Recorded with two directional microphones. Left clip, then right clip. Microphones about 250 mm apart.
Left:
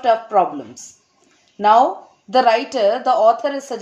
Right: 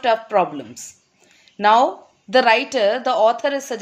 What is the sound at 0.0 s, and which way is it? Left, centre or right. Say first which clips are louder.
A woman's voice: left 2 dB; right.